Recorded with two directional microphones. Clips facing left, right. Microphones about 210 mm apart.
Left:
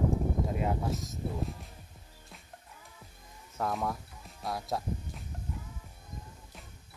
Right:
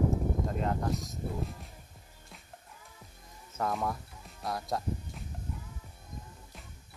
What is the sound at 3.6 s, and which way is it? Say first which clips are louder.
Speech: even; centre (ahead or behind).